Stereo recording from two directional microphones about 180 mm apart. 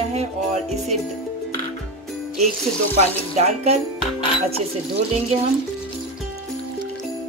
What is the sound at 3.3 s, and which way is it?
Speech, 35° right (ahead or behind).